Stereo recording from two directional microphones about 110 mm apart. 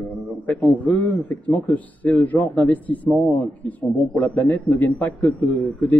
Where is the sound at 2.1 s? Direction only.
15° left (ahead or behind).